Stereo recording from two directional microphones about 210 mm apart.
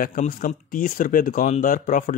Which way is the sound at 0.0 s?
40° left (ahead or behind).